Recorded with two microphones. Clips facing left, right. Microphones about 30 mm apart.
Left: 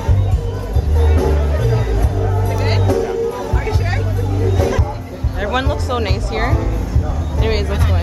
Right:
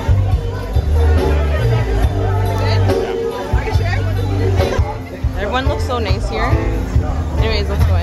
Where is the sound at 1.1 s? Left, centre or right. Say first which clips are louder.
Right 1 dB; right.